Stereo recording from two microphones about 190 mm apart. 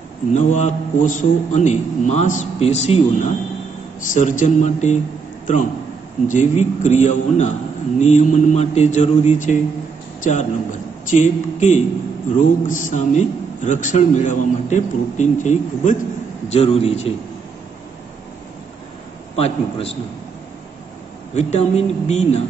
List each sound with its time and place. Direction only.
0.3 s a man's voice: 40° left (ahead or behind)
6.2 s a man's voice: 40° left (ahead or behind)
19.3 s a man's voice: 30° left (ahead or behind)
21.4 s a man's voice: 35° left (ahead or behind)